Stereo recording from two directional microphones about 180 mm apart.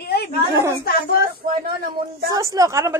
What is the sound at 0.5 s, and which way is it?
Speech, 15° right (ahead or behind).